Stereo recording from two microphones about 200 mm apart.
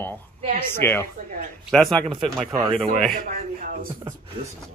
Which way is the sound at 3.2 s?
40° right (ahead or behind).